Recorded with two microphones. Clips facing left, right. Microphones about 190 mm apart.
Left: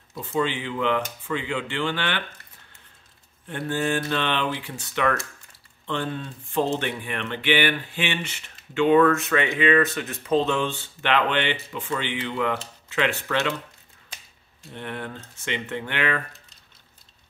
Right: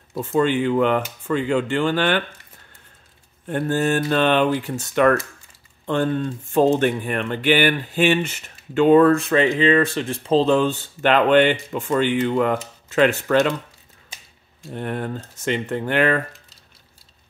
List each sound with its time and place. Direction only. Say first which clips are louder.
0.1 s speech: right 6 dB; 50° right (ahead or behind)
3.4 s speech: right 5 dB; 45° right (ahead or behind)
14.7 s speech: right 7 dB; 45° right (ahead or behind)